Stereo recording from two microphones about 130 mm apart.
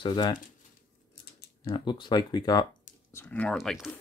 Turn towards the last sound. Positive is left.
turn(degrees=0)  # may be behind; listen again after turning